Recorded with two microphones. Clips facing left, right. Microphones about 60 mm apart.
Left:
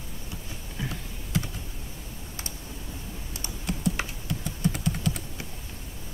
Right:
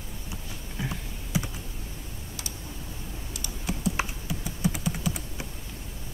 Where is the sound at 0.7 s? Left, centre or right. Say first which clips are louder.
Right 1 dB; centre.